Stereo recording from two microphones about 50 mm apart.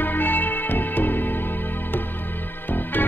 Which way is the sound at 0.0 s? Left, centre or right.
Left.